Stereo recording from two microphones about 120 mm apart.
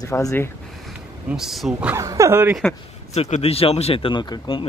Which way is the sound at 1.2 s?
5° right (ahead or behind).